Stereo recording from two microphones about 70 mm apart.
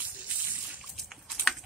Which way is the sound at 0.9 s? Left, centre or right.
Centre.